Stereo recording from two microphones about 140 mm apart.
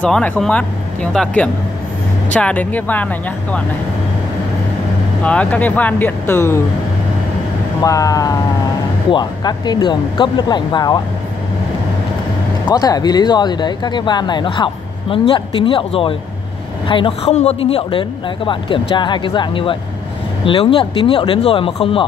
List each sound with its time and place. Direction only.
0.0 s speech: 10° left (ahead or behind)
5.2 s speech: 10° left (ahead or behind)
7.8 s speech: 25° left (ahead or behind)
12.6 s speech: 25° left (ahead or behind)